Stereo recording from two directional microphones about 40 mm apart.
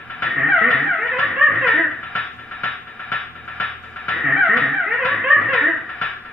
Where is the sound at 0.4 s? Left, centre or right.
Centre.